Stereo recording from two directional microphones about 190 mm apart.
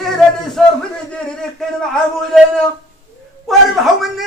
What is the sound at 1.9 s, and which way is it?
Speech, 5° left (ahead or behind).